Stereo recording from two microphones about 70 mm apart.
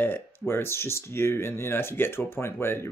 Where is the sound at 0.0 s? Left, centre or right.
Left.